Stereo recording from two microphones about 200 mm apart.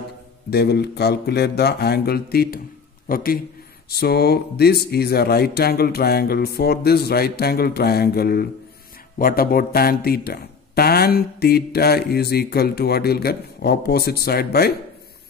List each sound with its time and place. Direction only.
0.5 s a man's voice: 55° left (ahead or behind)